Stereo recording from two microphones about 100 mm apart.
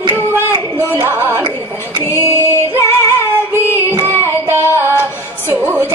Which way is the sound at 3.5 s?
20° right (ahead or behind).